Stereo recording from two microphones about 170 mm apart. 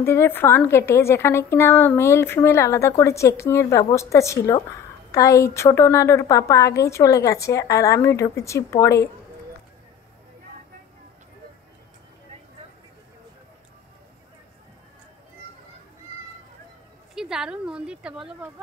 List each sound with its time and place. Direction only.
0.0 s a woman's voice: 15° left (ahead or behind)
17.1 s speech: 5° right (ahead or behind)